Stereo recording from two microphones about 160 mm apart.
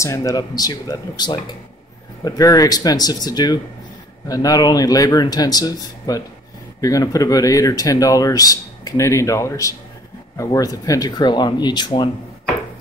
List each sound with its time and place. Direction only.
0.0 s speech: 20° left (ahead or behind)